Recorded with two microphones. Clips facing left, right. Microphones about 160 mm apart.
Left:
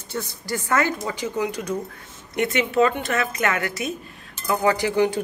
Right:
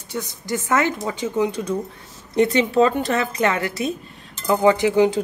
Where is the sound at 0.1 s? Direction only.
20° right (ahead or behind).